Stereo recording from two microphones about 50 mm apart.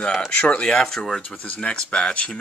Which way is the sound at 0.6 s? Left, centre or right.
Centre.